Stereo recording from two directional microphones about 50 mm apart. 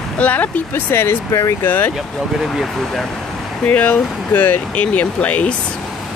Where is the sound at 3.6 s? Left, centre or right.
Left.